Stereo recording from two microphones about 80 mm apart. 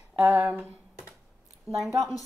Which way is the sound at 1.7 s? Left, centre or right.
Left.